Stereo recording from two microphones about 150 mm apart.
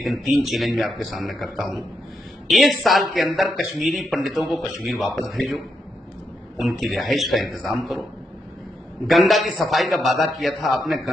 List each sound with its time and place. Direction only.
0.0 s speech: centre (ahead or behind)
6.6 s speech: centre (ahead or behind)
9.0 s speech: centre (ahead or behind)